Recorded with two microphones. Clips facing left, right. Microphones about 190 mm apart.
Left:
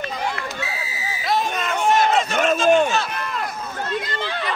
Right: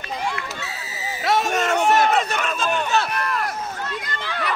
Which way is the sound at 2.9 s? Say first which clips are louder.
Right 2 dB; 70° right (ahead or behind).